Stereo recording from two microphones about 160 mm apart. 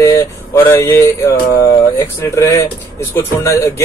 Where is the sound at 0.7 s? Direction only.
15° left (ahead or behind).